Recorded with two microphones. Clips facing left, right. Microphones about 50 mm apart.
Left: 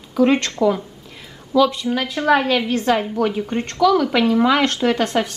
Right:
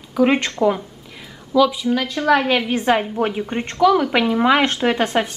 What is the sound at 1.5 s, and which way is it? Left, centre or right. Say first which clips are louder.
A woman's voice: right 1 dB; centre.